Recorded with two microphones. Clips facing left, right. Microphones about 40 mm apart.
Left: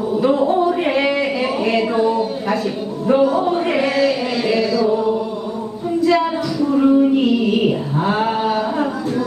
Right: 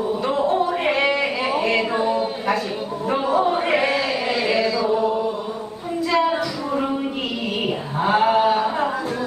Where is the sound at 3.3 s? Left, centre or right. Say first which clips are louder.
Left 1 dB; centre.